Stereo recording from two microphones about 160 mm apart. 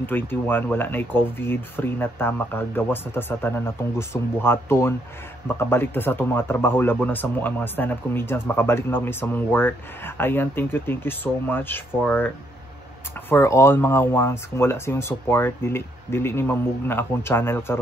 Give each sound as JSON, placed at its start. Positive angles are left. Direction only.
{"t": 0.0, "sound": "speech", "side_deg": 10}
{"t": 13.3, "sound": "speech", "side_deg": 15}